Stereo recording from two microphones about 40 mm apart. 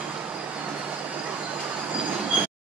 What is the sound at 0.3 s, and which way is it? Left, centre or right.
Train, right.